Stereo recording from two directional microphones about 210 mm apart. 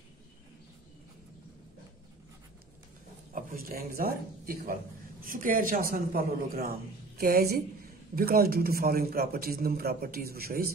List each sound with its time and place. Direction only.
3.3 s a man's voice: 45° right (ahead or behind)